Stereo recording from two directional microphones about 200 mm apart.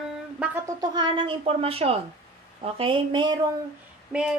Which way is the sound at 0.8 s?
20° right (ahead or behind).